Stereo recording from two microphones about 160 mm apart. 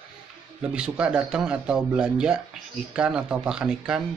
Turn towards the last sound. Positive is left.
turn(degrees=-5)  # may be behind; listen again after turning